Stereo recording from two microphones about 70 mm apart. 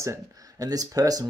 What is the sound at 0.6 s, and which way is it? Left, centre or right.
Speech, right.